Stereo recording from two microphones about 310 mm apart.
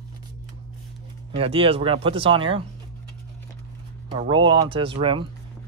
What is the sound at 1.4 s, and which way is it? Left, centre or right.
Speech, centre.